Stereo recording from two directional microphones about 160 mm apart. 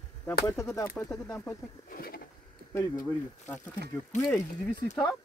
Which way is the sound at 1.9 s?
65° left (ahead or behind).